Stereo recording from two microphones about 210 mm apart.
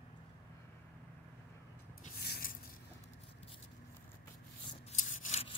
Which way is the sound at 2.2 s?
50° left (ahead or behind).